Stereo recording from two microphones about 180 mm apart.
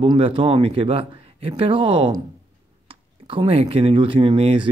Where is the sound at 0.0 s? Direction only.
30° right (ahead or behind).